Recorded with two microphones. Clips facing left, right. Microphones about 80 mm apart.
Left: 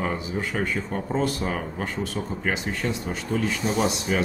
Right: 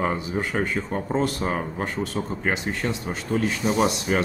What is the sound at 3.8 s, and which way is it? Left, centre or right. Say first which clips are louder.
Speech: right 2 dB; right.